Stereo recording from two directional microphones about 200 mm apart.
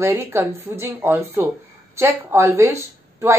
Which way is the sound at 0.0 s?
15° right (ahead or behind).